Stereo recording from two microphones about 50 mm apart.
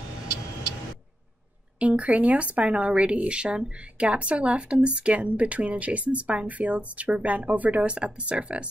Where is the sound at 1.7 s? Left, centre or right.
Right.